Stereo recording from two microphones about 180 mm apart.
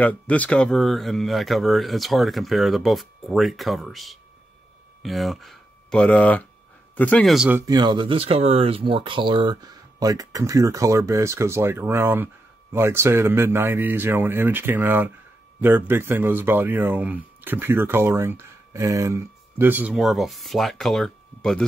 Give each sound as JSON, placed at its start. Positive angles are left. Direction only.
{"t": 0.0, "sound": "speech", "side_deg": 10}
{"t": 7.6, "sound": "speech", "side_deg": -25}